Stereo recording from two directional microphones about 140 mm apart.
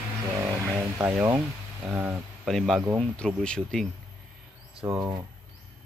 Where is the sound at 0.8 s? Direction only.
20° right (ahead or behind).